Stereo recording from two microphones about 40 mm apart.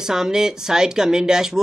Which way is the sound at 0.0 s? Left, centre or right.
Centre.